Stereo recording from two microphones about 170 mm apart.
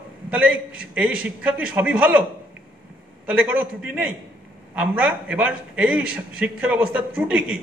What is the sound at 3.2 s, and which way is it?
A man's voice, 5° right (ahead or behind).